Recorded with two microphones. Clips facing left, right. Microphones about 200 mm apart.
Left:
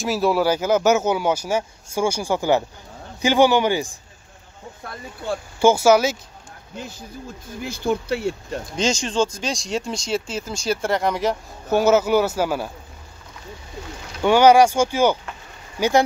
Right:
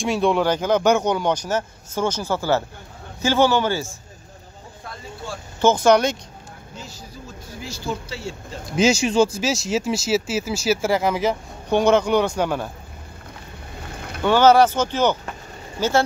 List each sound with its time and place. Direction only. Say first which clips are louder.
0.0 s speech: even; 5° left (ahead or behind)
5.6 s speech: left 1 dB; 10° left (ahead or behind)
6.8 s speech: left 6 dB; 55° left (ahead or behind)
8.7 s speech: right 5 dB; 10° right (ahead or behind)
14.2 s speech: left 1 dB; 15° left (ahead or behind)